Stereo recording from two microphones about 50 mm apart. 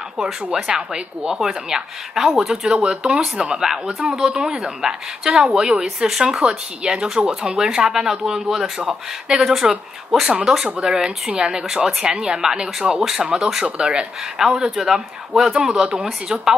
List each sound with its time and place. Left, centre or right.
0.2 s speech: centre